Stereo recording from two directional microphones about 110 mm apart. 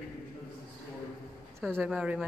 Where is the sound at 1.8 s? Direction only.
10° right (ahead or behind).